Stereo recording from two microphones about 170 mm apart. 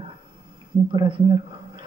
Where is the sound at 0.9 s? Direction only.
30° right (ahead or behind).